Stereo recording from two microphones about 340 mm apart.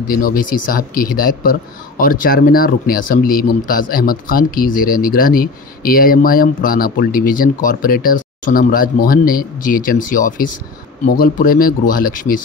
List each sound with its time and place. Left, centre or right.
0.1 s speech: left